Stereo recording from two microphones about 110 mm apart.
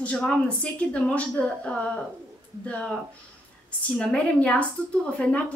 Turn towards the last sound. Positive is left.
turn(degrees=10)  # may be behind; listen again after turning